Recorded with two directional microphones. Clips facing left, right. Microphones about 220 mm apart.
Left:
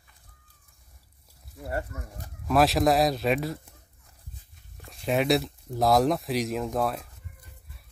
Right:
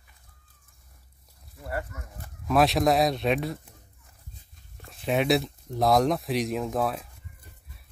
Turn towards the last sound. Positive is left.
turn(degrees=0)  # may be behind; listen again after turning